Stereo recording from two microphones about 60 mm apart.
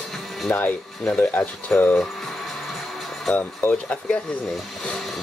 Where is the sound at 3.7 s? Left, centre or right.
Centre.